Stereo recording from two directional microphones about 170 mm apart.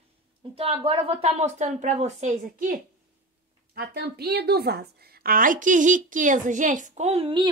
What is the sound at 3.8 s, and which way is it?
A woman's voice, 70° right (ahead or behind).